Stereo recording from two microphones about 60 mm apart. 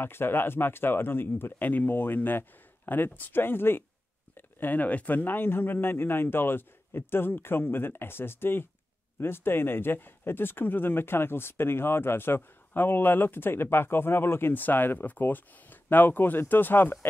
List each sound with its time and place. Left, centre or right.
0.0 s speech: left